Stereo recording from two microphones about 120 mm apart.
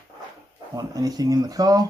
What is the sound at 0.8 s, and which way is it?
Speech, 30° right (ahead or behind).